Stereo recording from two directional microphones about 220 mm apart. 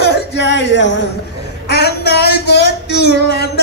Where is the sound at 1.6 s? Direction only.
45° left (ahead or behind).